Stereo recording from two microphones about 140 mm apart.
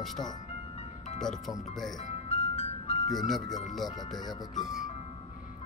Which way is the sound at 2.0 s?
50° left (ahead or behind).